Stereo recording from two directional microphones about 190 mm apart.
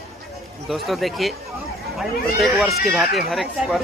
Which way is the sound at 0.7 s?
Centre (ahead or behind).